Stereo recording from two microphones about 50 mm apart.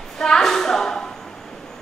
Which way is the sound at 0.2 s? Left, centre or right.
Centre.